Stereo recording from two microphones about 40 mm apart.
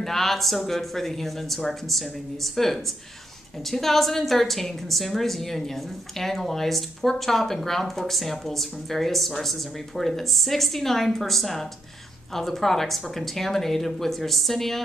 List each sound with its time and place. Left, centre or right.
0.0 s speech: centre